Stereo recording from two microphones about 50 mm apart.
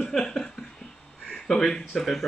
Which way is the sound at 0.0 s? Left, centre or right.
Centre.